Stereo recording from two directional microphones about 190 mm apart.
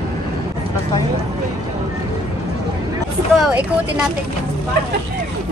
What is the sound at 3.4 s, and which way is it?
Speech, 5° right (ahead or behind).